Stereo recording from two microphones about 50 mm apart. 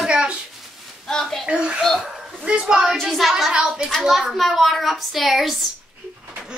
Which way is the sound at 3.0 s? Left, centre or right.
Centre.